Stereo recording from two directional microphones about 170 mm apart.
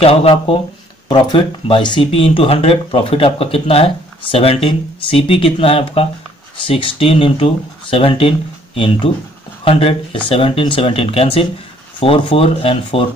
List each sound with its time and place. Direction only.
0.0 s speech: 35° left (ahead or behind)